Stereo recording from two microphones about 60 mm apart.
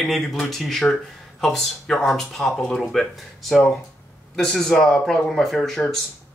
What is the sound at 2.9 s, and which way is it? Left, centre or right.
Speech, centre.